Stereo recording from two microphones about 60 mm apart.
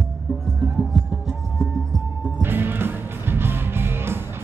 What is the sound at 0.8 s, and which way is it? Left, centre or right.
Music, centre.